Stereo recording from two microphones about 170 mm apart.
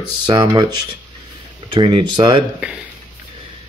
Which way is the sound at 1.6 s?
30° right (ahead or behind).